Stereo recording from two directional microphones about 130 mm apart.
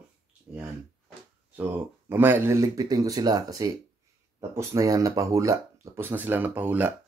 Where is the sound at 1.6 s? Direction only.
15° right (ahead or behind).